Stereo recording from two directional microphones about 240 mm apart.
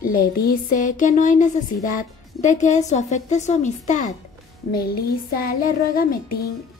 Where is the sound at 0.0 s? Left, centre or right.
Left.